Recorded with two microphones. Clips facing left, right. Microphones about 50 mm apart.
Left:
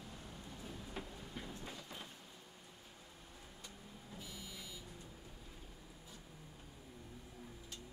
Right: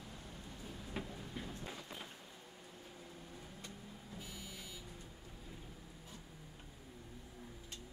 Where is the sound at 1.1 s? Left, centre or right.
Centre.